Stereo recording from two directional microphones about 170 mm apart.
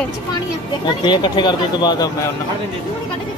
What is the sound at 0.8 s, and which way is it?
Speech, 25° left (ahead or behind).